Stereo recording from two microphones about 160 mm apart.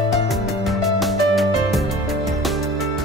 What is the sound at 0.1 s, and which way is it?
Music, centre (ahead or behind).